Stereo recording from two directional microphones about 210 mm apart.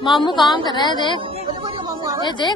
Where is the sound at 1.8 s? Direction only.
15° right (ahead or behind).